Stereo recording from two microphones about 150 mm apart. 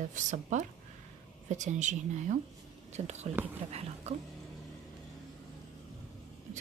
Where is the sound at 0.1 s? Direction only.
55° right (ahead or behind).